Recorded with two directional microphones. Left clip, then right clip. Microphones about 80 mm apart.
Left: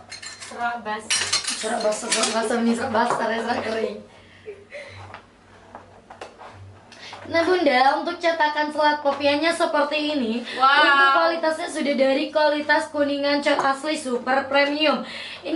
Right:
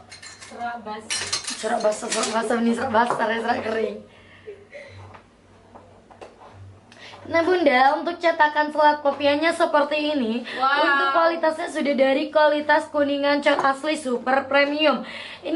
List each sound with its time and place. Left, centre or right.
0.1 s cutlery: centre
2.0 s speech: centre
2.4 s a woman's voice: right
7.0 s a woman's voice: right
10.6 s speech: centre
11.1 s a woman's voice: right